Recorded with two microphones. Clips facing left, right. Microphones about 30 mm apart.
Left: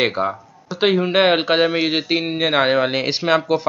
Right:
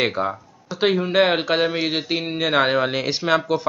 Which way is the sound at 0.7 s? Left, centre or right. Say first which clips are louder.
Left 2 dB; centre.